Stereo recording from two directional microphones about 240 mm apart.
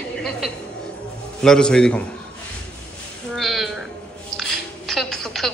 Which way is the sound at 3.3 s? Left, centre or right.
Centre.